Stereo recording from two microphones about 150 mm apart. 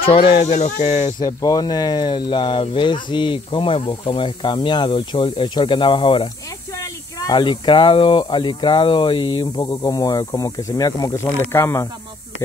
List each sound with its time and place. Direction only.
0.0 s speech: 40° left (ahead or behind)
1.2 s speech: 25° left (ahead or behind)